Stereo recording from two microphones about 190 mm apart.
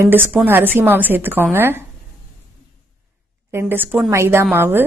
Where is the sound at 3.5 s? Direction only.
10° right (ahead or behind).